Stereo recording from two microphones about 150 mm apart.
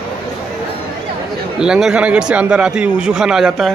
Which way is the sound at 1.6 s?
5° right (ahead or behind).